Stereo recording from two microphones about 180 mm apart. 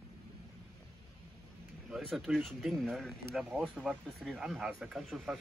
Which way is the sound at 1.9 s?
Centre (ahead or behind).